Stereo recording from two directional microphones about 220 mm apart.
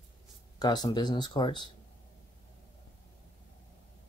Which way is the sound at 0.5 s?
20° left (ahead or behind).